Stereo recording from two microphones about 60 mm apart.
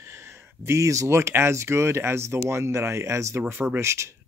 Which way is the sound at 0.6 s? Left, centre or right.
Right.